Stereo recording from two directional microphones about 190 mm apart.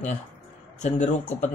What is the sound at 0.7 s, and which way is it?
Speech, 40° left (ahead or behind).